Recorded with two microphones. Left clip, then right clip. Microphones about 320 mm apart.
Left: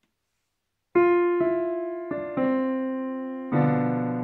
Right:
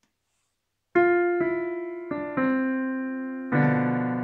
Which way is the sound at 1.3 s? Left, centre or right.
Left.